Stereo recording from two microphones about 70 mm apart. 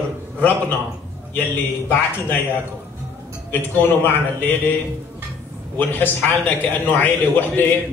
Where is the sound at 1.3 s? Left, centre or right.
Left.